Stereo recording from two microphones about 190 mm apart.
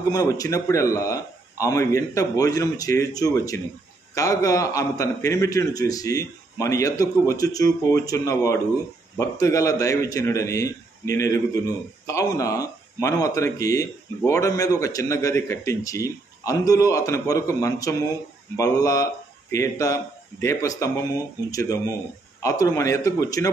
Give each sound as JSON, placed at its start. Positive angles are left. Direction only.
{"t": 0.1, "sound": "a man's voice", "side_deg": 20}